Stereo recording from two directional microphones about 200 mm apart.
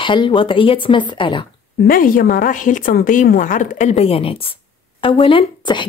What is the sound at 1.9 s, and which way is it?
A woman's voice, 45° left (ahead or behind).